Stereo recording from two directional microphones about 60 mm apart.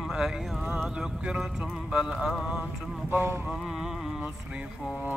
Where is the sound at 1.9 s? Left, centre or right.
Centre.